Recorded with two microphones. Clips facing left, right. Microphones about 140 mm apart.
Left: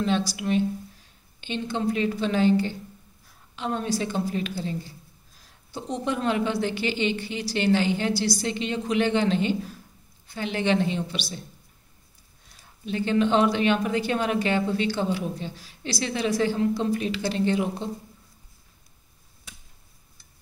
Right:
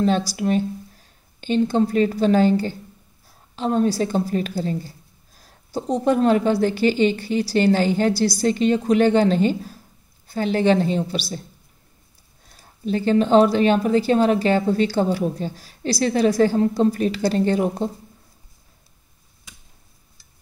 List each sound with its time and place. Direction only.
0.4 s a woman's voice: 40° right (ahead or behind)
12.4 s a woman's voice: 40° right (ahead or behind)